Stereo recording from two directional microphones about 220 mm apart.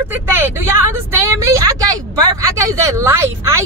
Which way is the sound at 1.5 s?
15° right (ahead or behind).